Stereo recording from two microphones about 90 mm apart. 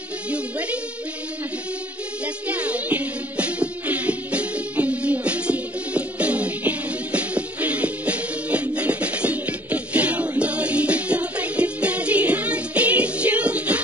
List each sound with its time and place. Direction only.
0.3 s speech: 15° right (ahead or behind)
2.2 s music: 15° right (ahead or behind)